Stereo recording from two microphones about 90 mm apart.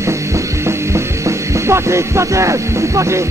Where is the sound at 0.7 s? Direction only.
30° right (ahead or behind).